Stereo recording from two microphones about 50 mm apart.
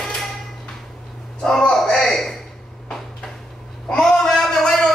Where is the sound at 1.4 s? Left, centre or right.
Centre.